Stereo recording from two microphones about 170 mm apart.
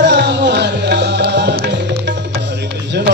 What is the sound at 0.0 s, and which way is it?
Music, 85° right.